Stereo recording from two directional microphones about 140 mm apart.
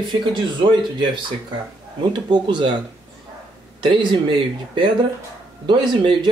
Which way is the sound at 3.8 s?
35° right (ahead or behind).